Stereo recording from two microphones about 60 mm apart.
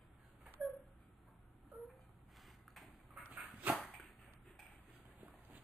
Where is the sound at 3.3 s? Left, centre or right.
Right.